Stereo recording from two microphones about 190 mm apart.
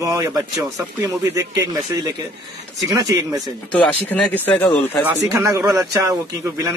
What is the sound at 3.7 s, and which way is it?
Speech, 5° left (ahead or behind).